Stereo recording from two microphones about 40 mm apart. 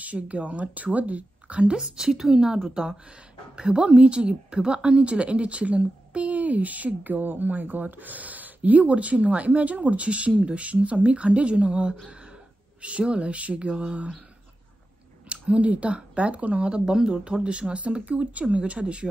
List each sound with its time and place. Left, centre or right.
0.0 s a woman's voice: right
1.8 s a woman's voice: centre; by 11.9 s right
12.1 s a sound: right
12.8 s speech: right
15.2 s a woman's voice: right